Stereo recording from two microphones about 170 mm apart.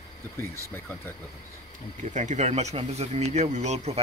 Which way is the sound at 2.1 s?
45° right (ahead or behind).